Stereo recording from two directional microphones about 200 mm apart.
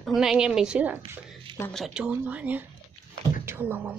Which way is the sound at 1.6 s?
Centre (ahead or behind).